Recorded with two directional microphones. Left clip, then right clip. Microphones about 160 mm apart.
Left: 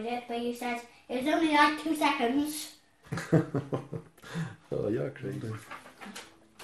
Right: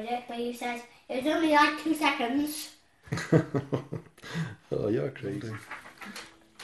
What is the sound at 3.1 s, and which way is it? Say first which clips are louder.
Speech: right 2 dB; 50° right (ahead or behind).